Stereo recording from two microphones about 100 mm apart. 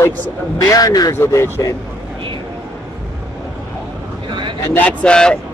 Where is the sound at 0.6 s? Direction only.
35° left (ahead or behind).